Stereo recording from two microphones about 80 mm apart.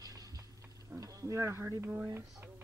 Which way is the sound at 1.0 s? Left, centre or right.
Right.